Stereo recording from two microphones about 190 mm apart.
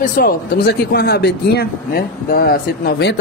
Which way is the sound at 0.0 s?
50° left (ahead or behind).